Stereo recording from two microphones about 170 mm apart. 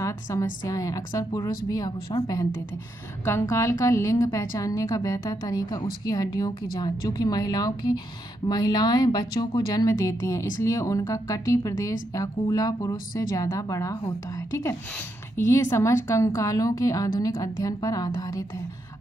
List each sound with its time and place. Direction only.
0.0 s a woman's voice: 20° left (ahead or behind)